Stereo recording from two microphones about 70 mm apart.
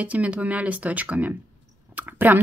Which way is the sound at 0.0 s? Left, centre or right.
Centre.